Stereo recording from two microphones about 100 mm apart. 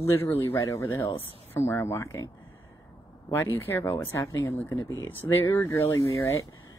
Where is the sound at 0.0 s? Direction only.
25° left (ahead or behind).